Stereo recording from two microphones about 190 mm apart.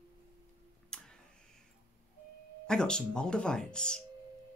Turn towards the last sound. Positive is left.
turn(degrees=5)  # may be behind; listen again after turning